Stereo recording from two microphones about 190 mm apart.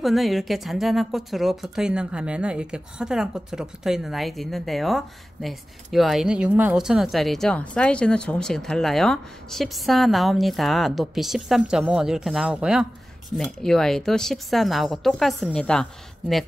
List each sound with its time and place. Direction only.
0.0 s speech: centre (ahead or behind)